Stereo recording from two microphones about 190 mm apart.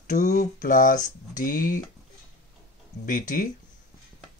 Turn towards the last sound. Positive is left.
turn(degrees=45)  # may be behind; listen again after turning